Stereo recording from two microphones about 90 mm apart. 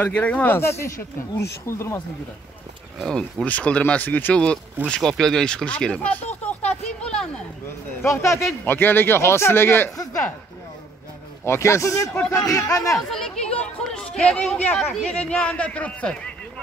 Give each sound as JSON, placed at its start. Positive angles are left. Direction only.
{"t": 0.0, "sound": "a man's voice", "side_deg": 15}
{"t": 0.6, "sound": "a man's voice", "side_deg": 30}
{"t": 3.4, "sound": "a man's voice", "side_deg": 15}
{"t": 8.0, "sound": "a man's voice", "side_deg": 35}
{"t": 11.4, "sound": "a man's voice", "side_deg": 30}
{"t": 12.6, "sound": "speech", "side_deg": 5}
{"t": 14.8, "sound": "speech", "side_deg": 0}
{"t": 15.0, "sound": "a man's voice", "side_deg": 15}